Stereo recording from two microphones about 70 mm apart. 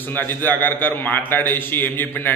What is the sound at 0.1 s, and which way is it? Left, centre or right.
A man's voice, left.